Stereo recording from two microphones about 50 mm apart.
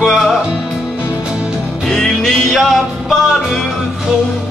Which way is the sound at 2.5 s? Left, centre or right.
Centre.